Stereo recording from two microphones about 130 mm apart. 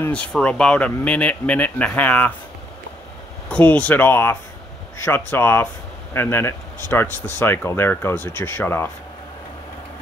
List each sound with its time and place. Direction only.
0.0 s speech: 10° left (ahead or behind)
3.4 s speech: 10° left (ahead or behind)